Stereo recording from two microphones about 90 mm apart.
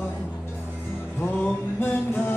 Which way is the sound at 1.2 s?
15° left (ahead or behind).